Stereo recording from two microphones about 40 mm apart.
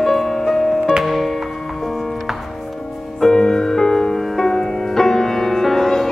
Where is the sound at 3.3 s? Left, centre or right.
Centre.